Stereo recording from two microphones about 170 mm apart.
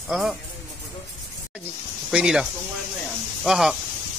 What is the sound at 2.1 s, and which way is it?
Speech, 5° right (ahead or behind).